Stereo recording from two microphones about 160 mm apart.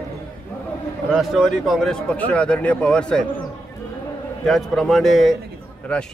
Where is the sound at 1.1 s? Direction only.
Centre (ahead or behind).